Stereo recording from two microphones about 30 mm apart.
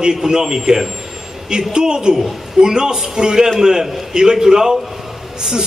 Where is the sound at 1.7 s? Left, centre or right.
Right.